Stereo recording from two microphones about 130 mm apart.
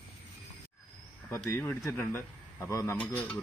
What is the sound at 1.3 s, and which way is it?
Speech, 15° left (ahead or behind).